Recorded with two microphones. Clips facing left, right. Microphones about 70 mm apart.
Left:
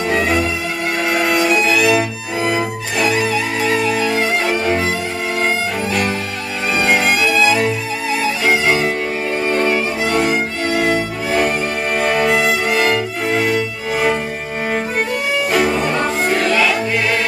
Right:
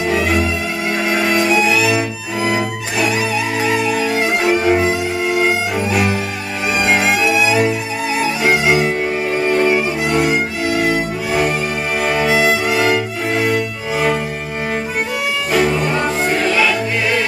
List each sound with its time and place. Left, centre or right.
0.1 s violin: centre
1.1 s music: centre
5.4 s violin: centre
8.7 s music: centre
9.4 s cello: centre
12.0 s violin: centre
15.5 s music: centre